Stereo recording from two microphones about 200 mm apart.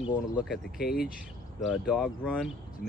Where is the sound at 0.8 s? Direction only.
50° left (ahead or behind).